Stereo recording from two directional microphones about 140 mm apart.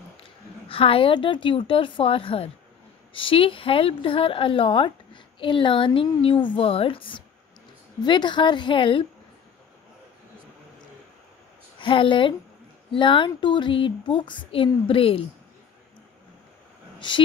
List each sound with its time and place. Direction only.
0.2 s a woman's voice: 40° left (ahead or behind)
11.8 s a woman's voice: 35° left (ahead or behind)
17.0 s a woman's voice: 35° left (ahead or behind)